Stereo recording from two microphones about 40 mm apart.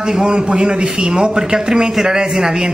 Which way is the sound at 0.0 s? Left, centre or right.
Centre.